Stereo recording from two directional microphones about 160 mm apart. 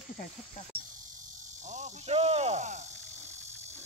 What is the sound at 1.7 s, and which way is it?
Speech, 50° right (ahead or behind).